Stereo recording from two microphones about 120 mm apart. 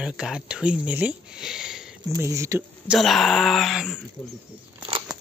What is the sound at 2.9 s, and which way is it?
Speech, centre (ahead or behind).